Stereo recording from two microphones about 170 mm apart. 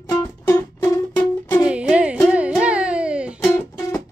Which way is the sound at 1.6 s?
5° right (ahead or behind).